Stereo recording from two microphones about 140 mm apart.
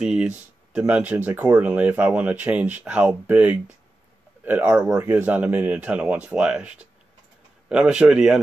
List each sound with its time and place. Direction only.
0.0 s speech: 5° right (ahead or behind)